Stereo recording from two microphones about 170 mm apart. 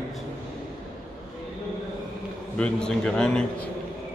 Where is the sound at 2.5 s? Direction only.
5° left (ahead or behind).